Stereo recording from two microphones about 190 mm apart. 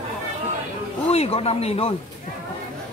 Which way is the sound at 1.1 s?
30° left (ahead or behind).